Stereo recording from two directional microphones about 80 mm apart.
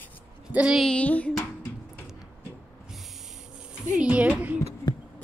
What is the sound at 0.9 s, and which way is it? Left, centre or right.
Music, centre.